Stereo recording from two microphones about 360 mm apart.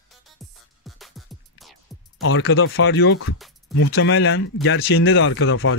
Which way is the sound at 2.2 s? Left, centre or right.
Left.